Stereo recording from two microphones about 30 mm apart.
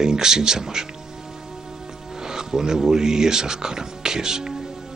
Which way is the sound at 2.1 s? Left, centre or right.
Centre.